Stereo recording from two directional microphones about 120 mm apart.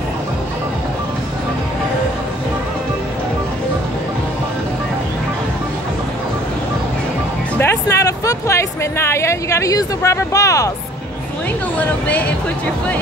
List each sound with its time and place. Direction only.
7.5 s speech: 20° left (ahead or behind)
11.8 s speech: 10° left (ahead or behind)